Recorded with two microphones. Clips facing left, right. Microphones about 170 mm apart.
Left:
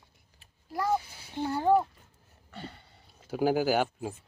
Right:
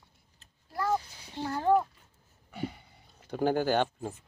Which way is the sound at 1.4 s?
10° left (ahead or behind).